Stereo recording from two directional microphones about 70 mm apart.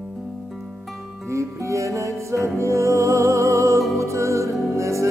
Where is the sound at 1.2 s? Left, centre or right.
Right.